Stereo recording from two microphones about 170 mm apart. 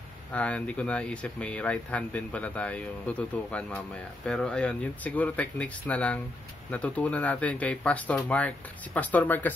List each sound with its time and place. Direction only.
0.3 s speech: 10° left (ahead or behind)